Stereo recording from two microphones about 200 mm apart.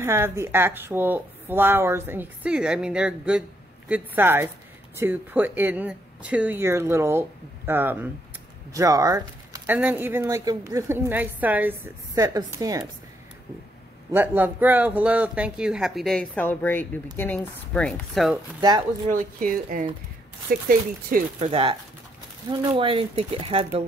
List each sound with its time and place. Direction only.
0.0 s speech: 15° right (ahead or behind)
14.1 s speech: 10° right (ahead or behind)
19.0 s speech: 45° right (ahead or behind)
21.5 s speech: 25° right (ahead or behind)